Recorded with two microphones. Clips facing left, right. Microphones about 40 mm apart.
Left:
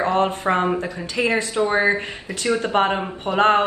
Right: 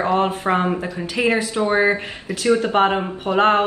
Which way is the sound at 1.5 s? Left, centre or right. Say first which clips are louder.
Right 1 dB; right.